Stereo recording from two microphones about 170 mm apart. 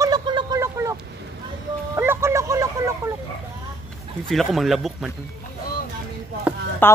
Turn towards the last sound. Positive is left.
turn(degrees=10)  # may be behind; listen again after turning